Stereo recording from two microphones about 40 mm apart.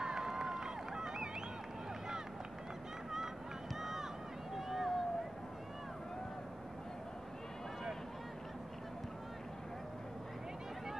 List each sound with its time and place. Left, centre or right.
0.0 s run: centre
3.8 s run: centre
4.6 s vehicle: centre